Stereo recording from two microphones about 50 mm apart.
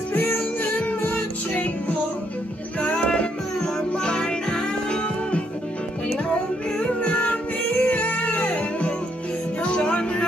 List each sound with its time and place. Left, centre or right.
0.1 s music: left
2.8 s music: left
6.3 s music: left